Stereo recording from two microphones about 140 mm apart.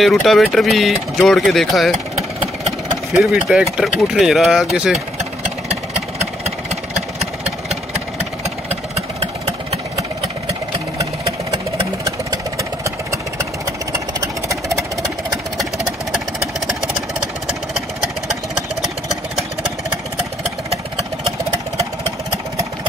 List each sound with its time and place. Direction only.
0.0 s speech: centre (ahead or behind)
3.2 s speech: 5° right (ahead or behind)
5.4 s vehicle: 50° right (ahead or behind)
9.2 s vehicle: 45° right (ahead or behind)
12.0 s vehicle: 25° right (ahead or behind)
13.7 s engine: 25° right (ahead or behind)
17.5 s engine: 5° right (ahead or behind)